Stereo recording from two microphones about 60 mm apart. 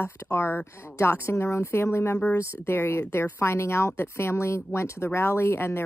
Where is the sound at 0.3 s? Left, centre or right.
Left.